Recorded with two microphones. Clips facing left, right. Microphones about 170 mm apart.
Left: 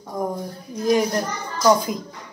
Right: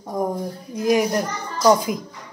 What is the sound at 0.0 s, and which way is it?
Speech, 20° right (ahead or behind).